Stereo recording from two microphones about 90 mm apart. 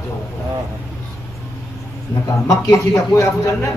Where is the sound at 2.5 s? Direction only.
35° left (ahead or behind).